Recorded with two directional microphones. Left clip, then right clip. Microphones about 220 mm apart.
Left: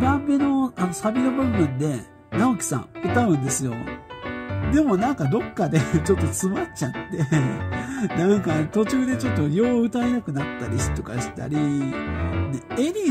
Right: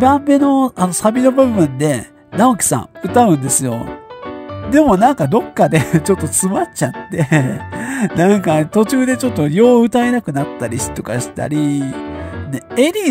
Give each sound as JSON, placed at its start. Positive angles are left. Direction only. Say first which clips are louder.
{"t": 0.0, "sound": "music", "louder": "right 10 dB", "side_deg": -40}